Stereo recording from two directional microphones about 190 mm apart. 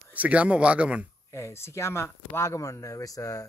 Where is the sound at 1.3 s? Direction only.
15° left (ahead or behind).